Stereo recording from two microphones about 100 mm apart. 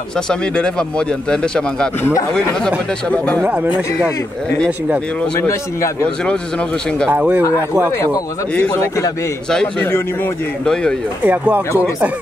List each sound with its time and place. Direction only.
0.3 s a man's voice: 10° left (ahead or behind)
3.4 s speech: 10° right (ahead or behind)
5.5 s a man's voice: 30° left (ahead or behind)
7.1 s speech: 15° right (ahead or behind)
8.5 s a man's voice: 20° left (ahead or behind)
10.6 s a man's voice: 5° left (ahead or behind)
11.2 s speech: 15° right (ahead or behind)